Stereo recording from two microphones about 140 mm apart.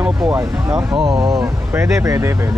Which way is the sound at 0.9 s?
30° right (ahead or behind).